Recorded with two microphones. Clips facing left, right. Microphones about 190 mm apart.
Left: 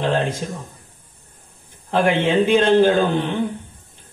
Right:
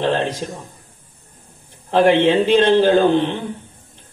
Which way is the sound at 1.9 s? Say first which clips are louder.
Right 5 dB; 50° left (ahead or behind).